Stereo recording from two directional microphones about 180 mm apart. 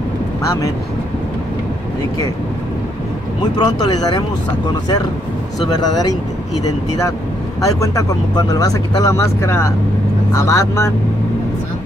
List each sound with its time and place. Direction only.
0.5 s speech: 15° left (ahead or behind)
3.5 s speech: 25° left (ahead or behind)
5.7 s speech: 20° left (ahead or behind)
7.6 s speech: 20° left (ahead or behind)